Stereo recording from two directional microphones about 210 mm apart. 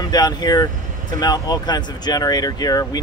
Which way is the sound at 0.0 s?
20° left (ahead or behind).